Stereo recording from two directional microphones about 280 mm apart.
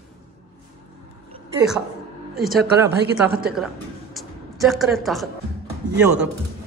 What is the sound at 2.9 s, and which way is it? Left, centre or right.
Speech, right.